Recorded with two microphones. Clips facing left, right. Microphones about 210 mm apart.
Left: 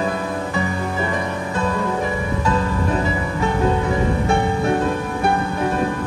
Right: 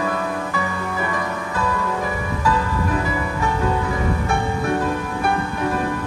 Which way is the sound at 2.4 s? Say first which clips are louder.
Even; 25° left (ahead or behind).